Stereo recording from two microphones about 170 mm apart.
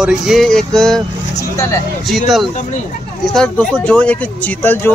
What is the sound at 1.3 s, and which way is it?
Speech, 15° left (ahead or behind).